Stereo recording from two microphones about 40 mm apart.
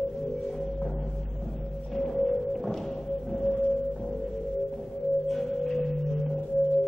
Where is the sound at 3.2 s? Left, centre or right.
Centre.